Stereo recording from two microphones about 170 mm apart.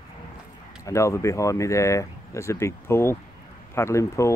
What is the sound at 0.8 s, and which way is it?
Speech, 20° left (ahead or behind).